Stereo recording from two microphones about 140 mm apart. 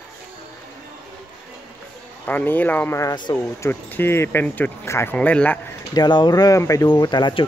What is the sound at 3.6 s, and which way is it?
Speech, 15° left (ahead or behind).